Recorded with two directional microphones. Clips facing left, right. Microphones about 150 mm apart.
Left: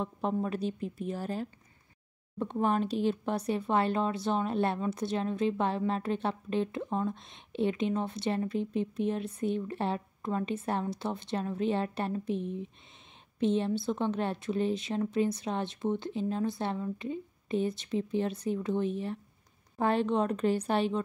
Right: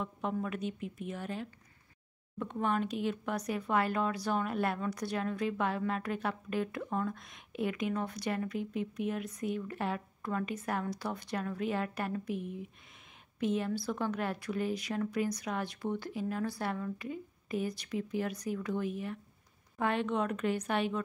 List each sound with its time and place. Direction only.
0.0 s a woman's voice: 30° left (ahead or behind)